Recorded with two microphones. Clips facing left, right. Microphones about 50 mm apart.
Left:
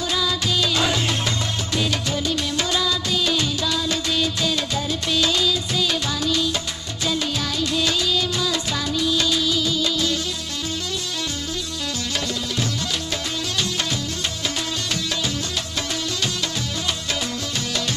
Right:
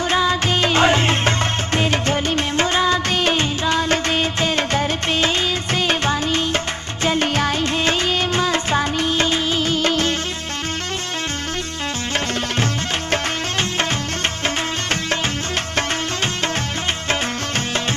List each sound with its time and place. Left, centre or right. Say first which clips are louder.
0.1 s music: right 5 dB; right
1.8 s music of bollywood: right 4 dB; right
7.1 s music: right 6 dB; right
13.1 s music: right 5 dB; right